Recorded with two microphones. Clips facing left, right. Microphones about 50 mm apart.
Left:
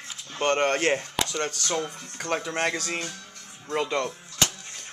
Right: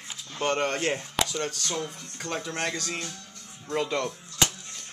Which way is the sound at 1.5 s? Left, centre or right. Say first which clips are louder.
Left 3 dB; left.